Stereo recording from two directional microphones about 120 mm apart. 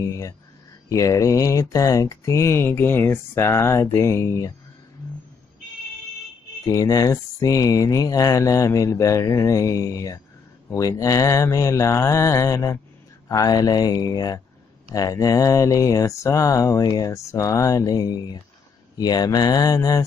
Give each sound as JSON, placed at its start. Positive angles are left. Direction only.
{"t": 0.0, "sound": "a sound", "side_deg": 25}
{"t": 0.8, "sound": "speech", "side_deg": 30}
{"t": 6.6, "sound": "speech", "side_deg": 30}